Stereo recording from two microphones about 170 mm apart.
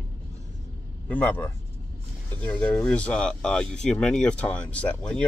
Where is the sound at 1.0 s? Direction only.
10° left (ahead or behind).